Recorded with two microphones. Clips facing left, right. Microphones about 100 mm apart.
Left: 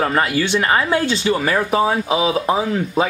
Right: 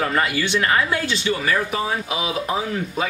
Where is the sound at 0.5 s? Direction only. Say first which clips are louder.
Left 3 dB; 30° left (ahead or behind).